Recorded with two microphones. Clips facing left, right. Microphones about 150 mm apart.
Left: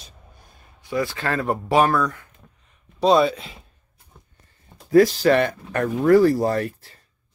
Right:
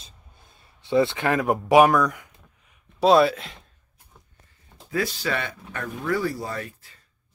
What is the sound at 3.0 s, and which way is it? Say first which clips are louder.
Speech: even; centre (ahead or behind).